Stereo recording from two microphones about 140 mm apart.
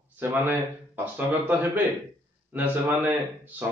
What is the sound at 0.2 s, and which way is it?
A man's voice, 15° right (ahead or behind).